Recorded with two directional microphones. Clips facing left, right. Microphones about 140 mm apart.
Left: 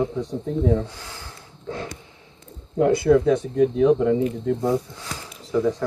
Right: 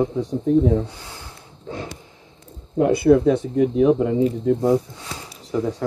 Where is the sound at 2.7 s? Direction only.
20° right (ahead or behind).